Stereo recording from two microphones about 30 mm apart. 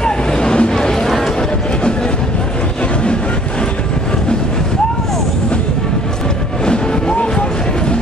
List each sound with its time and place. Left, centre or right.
0.0 s vehicle: left
6.6 s music: left